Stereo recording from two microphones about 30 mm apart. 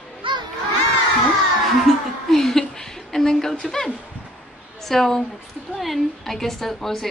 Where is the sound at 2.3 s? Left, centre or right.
Centre.